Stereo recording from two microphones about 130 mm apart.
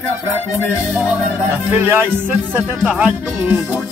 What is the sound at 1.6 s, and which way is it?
Speech, 20° right (ahead or behind).